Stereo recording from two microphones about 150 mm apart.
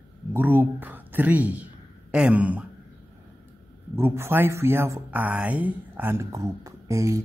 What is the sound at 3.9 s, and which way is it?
Speech, 15° right (ahead or behind).